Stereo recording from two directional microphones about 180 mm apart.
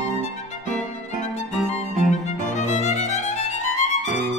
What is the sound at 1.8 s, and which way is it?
Violin, 40° left (ahead or behind).